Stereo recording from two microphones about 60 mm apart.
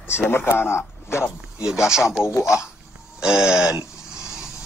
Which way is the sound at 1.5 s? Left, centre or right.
Centre.